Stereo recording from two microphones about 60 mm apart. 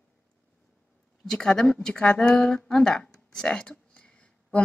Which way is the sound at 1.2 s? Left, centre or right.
Centre.